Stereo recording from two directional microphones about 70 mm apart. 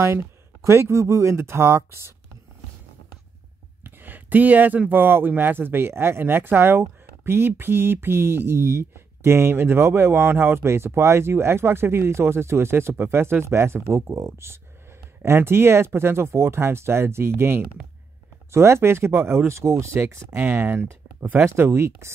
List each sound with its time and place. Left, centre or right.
0.0 s speech: right
3.8 s speech: right
20.3 s speech: right
21.5 s speech: right